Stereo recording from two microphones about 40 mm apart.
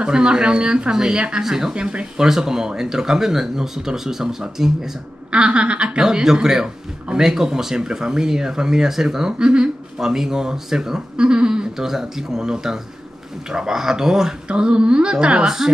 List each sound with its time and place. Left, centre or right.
0.0 s speech: right
2.1 s speech: centre
5.3 s speech: right
6.4 s speech: centre
11.7 s speech: centre
14.5 s speech: right